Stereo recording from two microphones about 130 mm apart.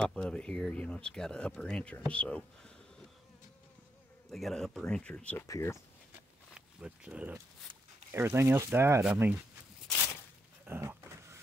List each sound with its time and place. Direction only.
0.0 s speech: 5° left (ahead or behind)
4.3 s speech: centre (ahead or behind); by 5.8 s 20° left (ahead or behind)
6.5 s speech: 10° right (ahead or behind)
10.6 s a sound: 15° right (ahead or behind)